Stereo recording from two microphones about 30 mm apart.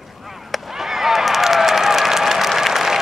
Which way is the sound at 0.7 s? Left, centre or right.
Centre.